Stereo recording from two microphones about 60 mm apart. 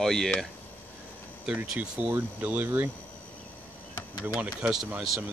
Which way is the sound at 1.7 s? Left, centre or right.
Centre.